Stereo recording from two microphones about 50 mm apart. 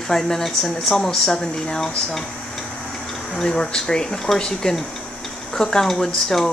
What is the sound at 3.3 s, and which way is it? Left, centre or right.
Speech, centre.